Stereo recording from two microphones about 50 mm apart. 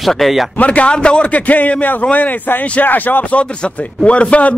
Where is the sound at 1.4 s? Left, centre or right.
Left.